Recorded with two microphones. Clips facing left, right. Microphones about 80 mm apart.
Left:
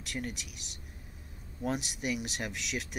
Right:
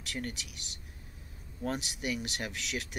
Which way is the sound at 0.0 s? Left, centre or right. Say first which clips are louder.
Even; centre.